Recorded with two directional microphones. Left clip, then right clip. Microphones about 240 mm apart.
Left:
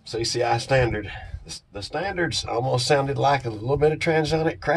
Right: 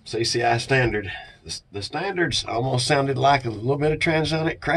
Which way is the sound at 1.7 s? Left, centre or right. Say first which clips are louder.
Even; left.